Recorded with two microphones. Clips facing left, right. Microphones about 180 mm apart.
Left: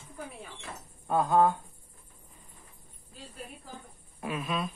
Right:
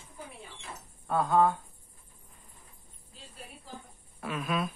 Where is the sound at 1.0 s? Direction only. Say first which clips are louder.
Left 1 dB; 15° left (ahead or behind).